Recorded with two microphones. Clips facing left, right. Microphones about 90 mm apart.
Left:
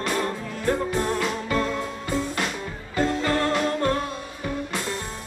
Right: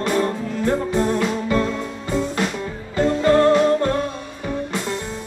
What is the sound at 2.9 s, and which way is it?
Music, 25° right (ahead or behind).